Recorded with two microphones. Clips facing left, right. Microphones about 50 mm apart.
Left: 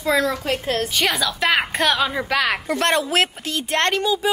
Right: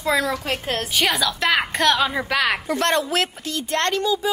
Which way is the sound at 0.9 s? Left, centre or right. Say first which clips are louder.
Even; centre.